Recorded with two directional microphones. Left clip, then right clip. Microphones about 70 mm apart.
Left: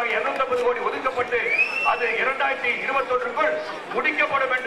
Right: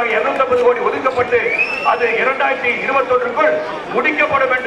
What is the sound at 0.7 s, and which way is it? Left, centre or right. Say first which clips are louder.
A man's voice: right 9 dB; right.